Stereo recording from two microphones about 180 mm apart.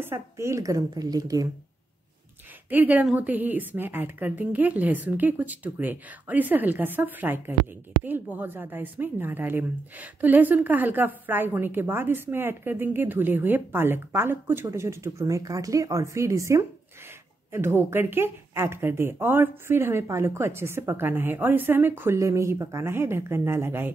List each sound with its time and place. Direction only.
0.0 s a woman's voice: 15° right (ahead or behind)
2.7 s a woman's voice: 10° right (ahead or behind)